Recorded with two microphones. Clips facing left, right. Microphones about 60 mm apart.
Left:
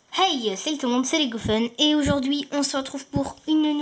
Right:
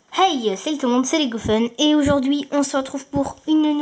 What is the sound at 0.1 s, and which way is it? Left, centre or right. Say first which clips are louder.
Speech: right 5 dB; centre.